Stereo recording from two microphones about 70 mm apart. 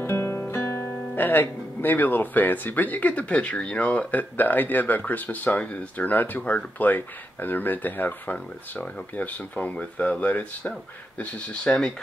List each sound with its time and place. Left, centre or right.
0.0 s speech: left; by 11.9 s centre